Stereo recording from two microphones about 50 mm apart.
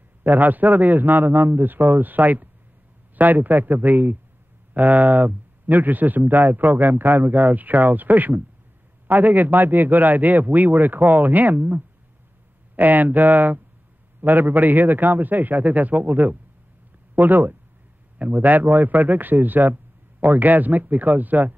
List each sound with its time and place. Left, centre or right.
0.2 s speech: right